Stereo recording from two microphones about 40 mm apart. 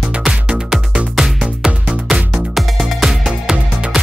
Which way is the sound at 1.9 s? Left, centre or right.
Right.